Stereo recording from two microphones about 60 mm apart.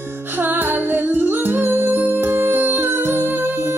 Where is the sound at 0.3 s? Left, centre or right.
Right.